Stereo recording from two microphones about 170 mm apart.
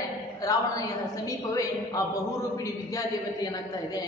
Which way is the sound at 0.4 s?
20° left (ahead or behind).